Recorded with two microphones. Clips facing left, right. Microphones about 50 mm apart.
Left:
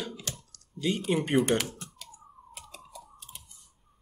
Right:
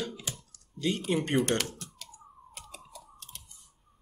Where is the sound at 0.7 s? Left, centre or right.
Centre.